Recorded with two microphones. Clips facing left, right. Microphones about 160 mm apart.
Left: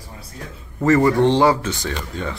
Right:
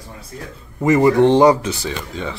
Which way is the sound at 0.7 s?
15° right (ahead or behind).